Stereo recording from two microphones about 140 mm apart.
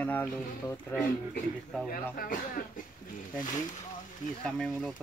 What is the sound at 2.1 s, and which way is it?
Speech, 90° left.